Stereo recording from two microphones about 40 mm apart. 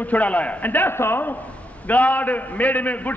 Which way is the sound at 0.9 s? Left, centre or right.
Left.